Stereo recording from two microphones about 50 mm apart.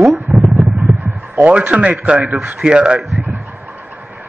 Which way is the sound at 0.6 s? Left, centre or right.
Right.